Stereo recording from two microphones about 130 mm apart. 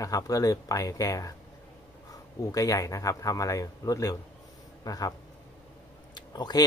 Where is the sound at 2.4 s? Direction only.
25° left (ahead or behind).